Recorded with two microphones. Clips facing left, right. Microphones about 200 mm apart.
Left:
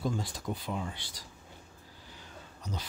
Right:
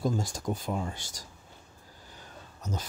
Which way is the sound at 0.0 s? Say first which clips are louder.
Right 4 dB; 45° right (ahead or behind).